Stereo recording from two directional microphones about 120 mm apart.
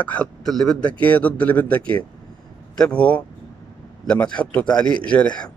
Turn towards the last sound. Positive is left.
turn(degrees=10)  # may be behind; listen again after turning